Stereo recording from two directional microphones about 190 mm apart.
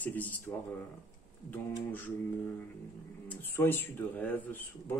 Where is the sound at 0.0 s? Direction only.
10° left (ahead or behind).